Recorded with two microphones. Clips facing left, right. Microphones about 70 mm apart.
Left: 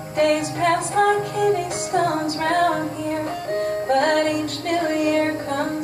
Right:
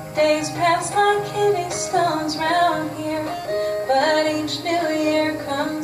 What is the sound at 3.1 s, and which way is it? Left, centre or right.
Music, left.